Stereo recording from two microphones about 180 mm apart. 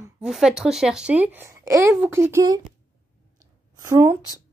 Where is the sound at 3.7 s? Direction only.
15° right (ahead or behind).